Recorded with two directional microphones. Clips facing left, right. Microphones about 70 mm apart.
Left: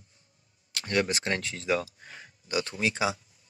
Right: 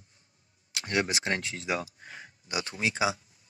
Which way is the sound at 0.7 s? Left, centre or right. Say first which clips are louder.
Left 1 dB; centre.